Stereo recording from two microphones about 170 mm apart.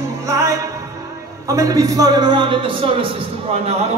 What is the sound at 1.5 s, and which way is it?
Speech, 20° right (ahead or behind).